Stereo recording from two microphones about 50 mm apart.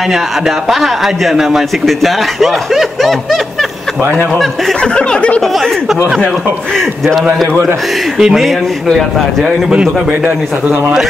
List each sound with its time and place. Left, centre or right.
0.7 s a man's voice: centre
4.9 s speech: left
5.4 s a man's voice: centre
8.2 s speech: centre